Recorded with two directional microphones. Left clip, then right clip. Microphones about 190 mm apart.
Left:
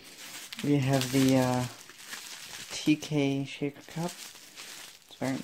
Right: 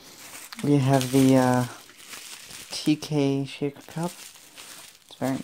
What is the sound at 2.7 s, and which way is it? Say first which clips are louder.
Speech: right 3 dB; 25° right (ahead or behind).